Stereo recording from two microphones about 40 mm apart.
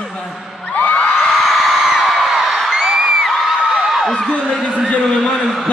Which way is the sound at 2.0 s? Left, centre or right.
Centre.